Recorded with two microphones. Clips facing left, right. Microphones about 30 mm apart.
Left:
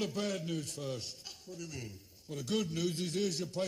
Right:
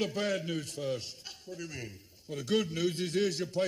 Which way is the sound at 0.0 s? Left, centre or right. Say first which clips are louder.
Right 4 dB; right.